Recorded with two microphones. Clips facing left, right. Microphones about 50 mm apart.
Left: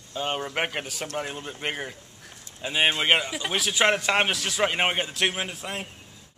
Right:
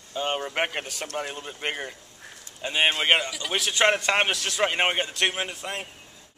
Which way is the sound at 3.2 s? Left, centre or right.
Centre.